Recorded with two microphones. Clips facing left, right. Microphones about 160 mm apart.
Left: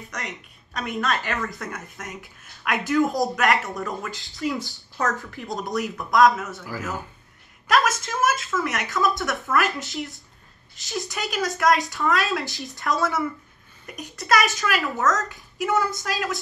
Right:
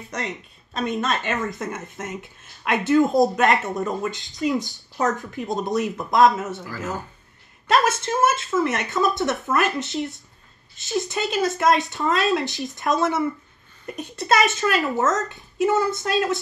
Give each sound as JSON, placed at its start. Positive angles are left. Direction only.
{"t": 0.1, "sound": "speech", "side_deg": -30}
{"t": 7.6, "sound": "speech", "side_deg": -30}